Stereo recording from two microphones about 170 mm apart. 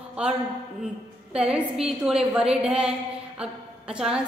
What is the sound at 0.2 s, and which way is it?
A man's voice, 5° right (ahead or behind).